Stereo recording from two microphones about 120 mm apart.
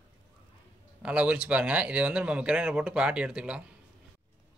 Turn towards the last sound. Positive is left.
turn(degrees=-5)  # may be behind; listen again after turning